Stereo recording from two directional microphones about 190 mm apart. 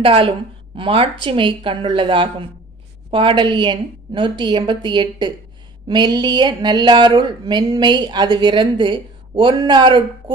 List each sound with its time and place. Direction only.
0.0 s speech: 30° right (ahead or behind)